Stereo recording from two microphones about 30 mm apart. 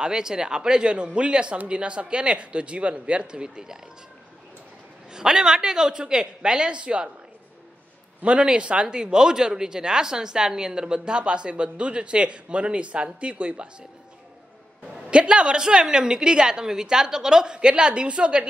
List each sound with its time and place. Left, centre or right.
0.0 s a woman's voice: right
5.1 s a woman's voice: right
8.2 s a man's voice: right
8.9 s a woman's voice: right
15.0 s a woman's voice: right